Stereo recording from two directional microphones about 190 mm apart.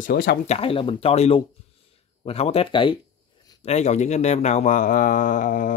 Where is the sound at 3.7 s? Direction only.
35° left (ahead or behind).